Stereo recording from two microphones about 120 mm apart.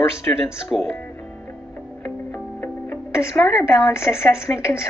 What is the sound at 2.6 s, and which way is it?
A woman's voice, 20° left (ahead or behind).